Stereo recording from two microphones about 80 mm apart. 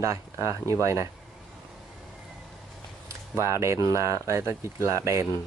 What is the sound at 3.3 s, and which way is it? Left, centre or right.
Speech, right.